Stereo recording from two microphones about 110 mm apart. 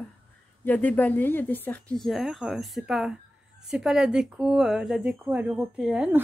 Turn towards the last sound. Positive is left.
turn(degrees=-10)  # may be behind; listen again after turning